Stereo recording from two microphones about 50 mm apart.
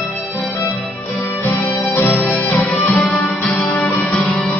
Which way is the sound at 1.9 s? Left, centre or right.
Left.